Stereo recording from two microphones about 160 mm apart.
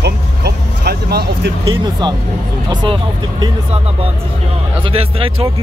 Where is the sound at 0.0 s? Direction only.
90° right.